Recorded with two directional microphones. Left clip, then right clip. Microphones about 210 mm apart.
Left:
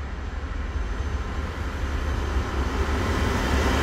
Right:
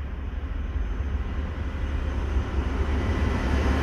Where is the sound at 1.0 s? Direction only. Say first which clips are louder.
Left 4 dB; 15° left (ahead or behind).